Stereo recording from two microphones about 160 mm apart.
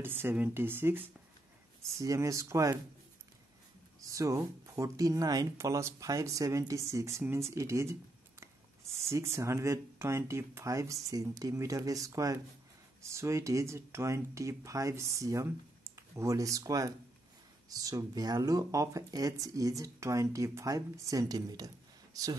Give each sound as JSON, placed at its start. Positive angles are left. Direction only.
{"t": 0.0, "sound": "speech", "side_deg": -15}
{"t": 4.0, "sound": "speech", "side_deg": -20}